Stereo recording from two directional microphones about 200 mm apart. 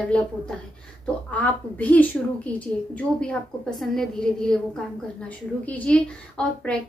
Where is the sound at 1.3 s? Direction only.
5° left (ahead or behind).